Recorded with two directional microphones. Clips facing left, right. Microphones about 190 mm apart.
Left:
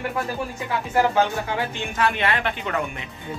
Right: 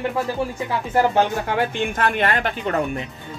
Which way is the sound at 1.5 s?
50° right (ahead or behind).